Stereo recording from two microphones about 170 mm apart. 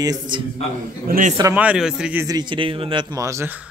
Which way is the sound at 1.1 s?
50° right (ahead or behind).